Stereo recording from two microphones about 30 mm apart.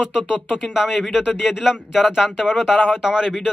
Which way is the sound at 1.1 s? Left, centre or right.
Right.